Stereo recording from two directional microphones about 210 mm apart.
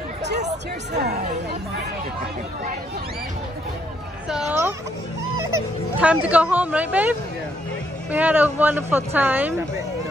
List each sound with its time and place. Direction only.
0.9 s speech: 50° right (ahead or behind)
4.3 s speech: centre (ahead or behind)
5.9 s speech: 5° right (ahead or behind)